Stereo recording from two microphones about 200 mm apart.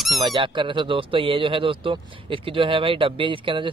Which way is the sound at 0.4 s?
25° right (ahead or behind).